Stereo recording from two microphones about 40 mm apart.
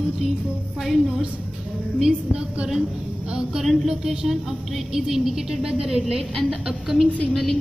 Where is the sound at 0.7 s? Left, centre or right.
Centre.